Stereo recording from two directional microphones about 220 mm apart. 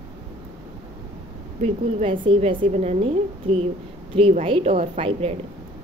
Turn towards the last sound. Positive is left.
turn(degrees=-25)  # may be behind; listen again after turning